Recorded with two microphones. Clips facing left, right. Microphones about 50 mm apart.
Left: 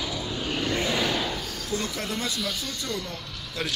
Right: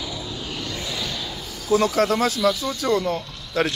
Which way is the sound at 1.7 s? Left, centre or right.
Right.